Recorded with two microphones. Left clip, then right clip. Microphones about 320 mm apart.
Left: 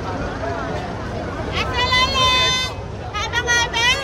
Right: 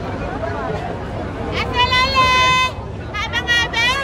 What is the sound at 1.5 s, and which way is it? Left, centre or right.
Vehicle, centre.